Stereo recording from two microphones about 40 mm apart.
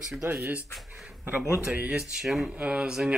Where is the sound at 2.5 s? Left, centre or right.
Right.